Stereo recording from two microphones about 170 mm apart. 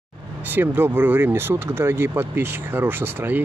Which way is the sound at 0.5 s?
10° right (ahead or behind).